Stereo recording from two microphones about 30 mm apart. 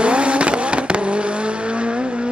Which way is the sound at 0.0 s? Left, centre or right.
Right.